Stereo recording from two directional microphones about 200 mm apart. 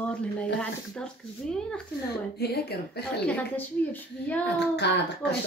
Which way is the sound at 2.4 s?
55° left (ahead or behind).